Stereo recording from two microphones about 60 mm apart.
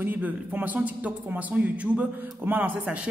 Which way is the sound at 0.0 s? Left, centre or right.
Right.